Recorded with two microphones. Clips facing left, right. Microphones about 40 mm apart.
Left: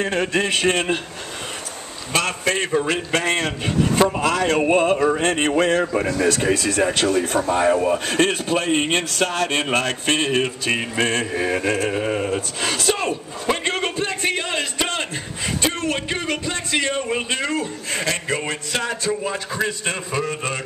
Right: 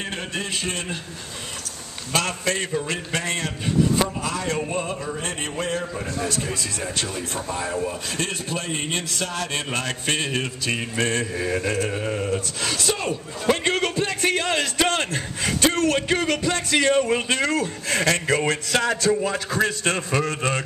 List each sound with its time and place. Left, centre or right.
0.3 s speech: left
2.1 s a man's voice: left
4.2 s a sound: left
7.8 s a man's voice: left
11.1 s a man's voice: left
11.9 s sheep: left
12.6 s speech: left
13.1 s a sound: centre
17.8 s a man's voice: centre